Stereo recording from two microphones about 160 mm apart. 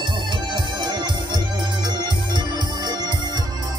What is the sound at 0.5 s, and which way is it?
Music, 25° right (ahead or behind).